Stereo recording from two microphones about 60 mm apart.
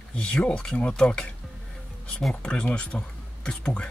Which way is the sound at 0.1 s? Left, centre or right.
Centre.